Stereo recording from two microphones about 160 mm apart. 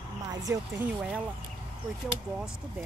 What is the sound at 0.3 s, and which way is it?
Speech, 20° right (ahead or behind).